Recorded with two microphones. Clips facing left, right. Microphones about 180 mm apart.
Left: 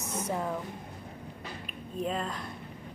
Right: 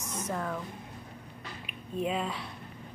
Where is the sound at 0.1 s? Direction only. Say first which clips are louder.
Left 2 dB; 10° left (ahead or behind).